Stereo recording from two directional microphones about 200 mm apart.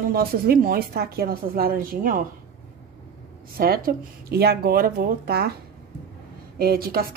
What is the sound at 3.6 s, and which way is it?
A woman's voice, 45° right (ahead or behind).